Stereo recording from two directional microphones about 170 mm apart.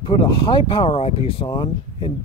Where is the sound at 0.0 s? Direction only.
30° left (ahead or behind).